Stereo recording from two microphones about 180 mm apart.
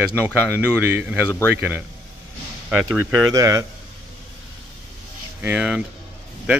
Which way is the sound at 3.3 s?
15° right (ahead or behind).